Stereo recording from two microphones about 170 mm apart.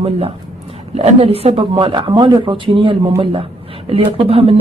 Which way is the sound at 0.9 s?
35° right (ahead or behind).